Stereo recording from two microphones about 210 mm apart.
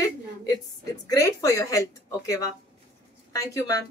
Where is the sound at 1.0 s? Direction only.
15° left (ahead or behind).